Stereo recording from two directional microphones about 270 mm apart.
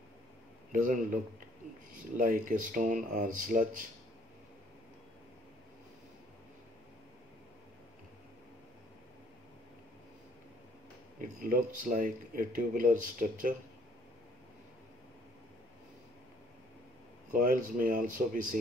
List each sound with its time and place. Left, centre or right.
0.7 s speech: right
11.1 s speech: right
17.3 s speech: right